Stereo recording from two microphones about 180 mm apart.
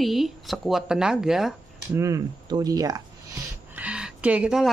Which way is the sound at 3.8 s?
5° right (ahead or behind).